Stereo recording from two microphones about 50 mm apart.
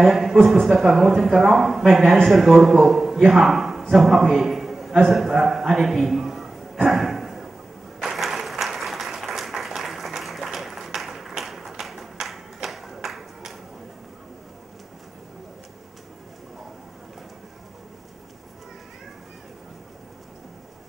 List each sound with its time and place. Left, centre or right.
0.0 s a man's voice: centre
8.0 s applause: centre
11.8 s a sound: centre